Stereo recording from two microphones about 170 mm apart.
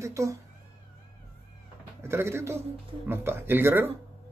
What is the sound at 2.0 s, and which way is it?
Speech, 15° right (ahead or behind).